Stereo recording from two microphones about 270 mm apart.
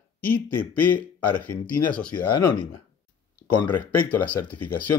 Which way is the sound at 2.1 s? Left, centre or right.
Centre.